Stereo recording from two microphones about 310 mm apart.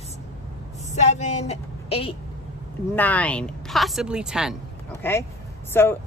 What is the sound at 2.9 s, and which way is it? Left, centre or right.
Speech, centre.